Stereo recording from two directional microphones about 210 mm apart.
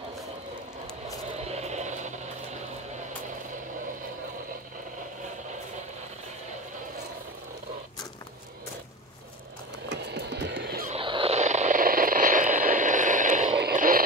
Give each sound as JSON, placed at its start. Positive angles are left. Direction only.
{"t": 1.4, "sound": "a sound", "side_deg": -30}
{"t": 9.8, "sound": "music", "side_deg": -50}
{"t": 10.9, "sound": "vehicle", "side_deg": -25}
{"t": 13.6, "sound": "radio", "side_deg": -45}